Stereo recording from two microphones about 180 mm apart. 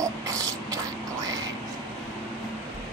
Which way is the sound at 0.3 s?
20° right (ahead or behind).